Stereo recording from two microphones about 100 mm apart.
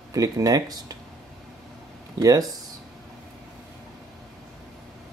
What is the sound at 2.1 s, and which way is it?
Speech, 40° right (ahead or behind).